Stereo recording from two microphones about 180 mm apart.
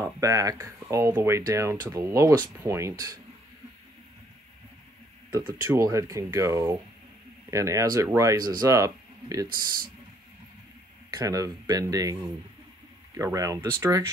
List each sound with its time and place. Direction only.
0.0 s speech: 20° right (ahead or behind)
5.3 s speech: 20° right (ahead or behind)
11.1 s speech: 20° right (ahead or behind)